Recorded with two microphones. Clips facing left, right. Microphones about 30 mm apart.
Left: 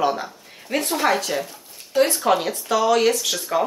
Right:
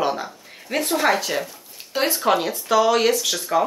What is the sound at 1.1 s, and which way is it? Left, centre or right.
Speech, centre.